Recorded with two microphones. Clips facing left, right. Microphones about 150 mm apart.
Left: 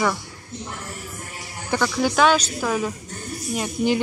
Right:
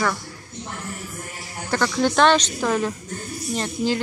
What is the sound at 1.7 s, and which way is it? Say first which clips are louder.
A woman's voice: right 1 dB; 10° left (ahead or behind).